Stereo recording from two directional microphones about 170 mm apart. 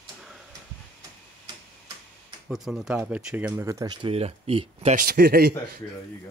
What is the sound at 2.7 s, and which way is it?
Speech, 5° right (ahead or behind).